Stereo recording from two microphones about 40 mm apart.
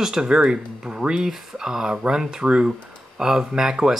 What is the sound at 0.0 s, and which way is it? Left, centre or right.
A man's voice, centre.